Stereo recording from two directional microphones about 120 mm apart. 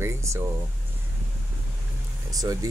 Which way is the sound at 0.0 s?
25° right (ahead or behind).